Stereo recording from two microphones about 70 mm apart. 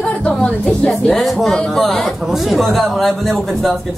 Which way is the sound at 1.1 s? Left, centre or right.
Centre.